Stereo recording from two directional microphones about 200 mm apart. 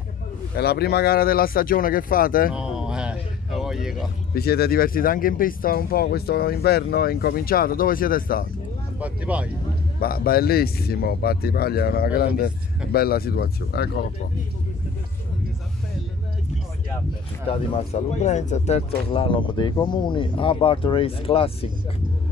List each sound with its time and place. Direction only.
0.6 s speech: 55° left (ahead or behind)
2.5 s a sound: 5° right (ahead or behind)
4.3 s speech: 50° left (ahead or behind)
9.0 s speech: 5° right (ahead or behind)
9.9 s speech: 50° left (ahead or behind)
17.5 s speech: 30° left (ahead or behind)